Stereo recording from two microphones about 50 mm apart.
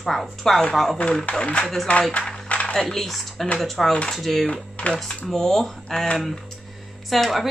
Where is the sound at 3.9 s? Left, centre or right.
Left.